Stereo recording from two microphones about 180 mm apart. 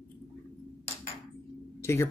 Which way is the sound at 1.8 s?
15° left (ahead or behind).